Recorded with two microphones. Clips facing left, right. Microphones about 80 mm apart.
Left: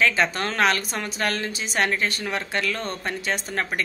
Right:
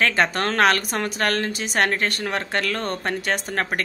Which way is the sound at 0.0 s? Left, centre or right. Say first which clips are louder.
Right 1 dB; right.